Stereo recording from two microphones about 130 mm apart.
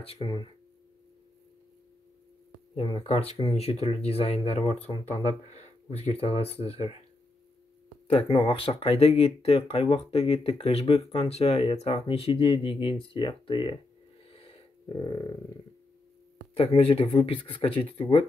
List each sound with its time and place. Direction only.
0.0 s speech: 45° left (ahead or behind)
2.7 s speech: 45° left (ahead or behind)
8.5 s speech: 45° left (ahead or behind)
14.3 s a sound: 45° left (ahead or behind)
14.9 s speech: 35° left (ahead or behind)
16.5 s speech: 45° left (ahead or behind)